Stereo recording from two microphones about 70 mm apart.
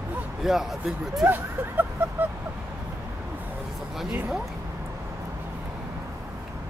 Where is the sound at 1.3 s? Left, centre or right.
Right.